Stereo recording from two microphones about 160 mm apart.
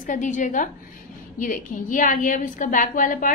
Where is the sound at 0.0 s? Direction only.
55° left (ahead or behind).